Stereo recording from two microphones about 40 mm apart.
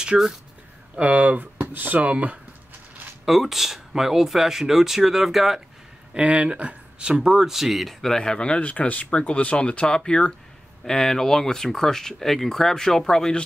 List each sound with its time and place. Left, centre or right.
0.1 s speech: centre
0.9 s speech: right
2.0 s speech: right
3.3 s speech: centre
6.2 s speech: right
7.1 s speech: centre
8.2 s speech: left
8.5 s speech: left
10.9 s speech: centre